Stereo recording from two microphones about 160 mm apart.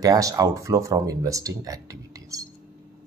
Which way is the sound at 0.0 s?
20° right (ahead or behind).